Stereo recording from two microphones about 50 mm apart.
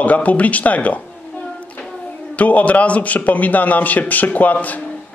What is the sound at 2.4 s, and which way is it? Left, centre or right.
A man's voice, left.